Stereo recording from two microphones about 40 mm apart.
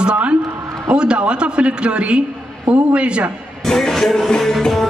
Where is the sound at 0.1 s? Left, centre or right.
Right.